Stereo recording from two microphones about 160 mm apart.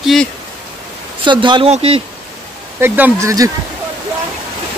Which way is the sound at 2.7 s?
15° right (ahead or behind).